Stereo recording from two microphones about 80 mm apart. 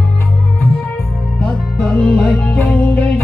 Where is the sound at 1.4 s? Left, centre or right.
Centre.